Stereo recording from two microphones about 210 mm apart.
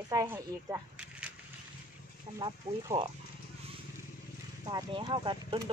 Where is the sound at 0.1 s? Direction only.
15° right (ahead or behind).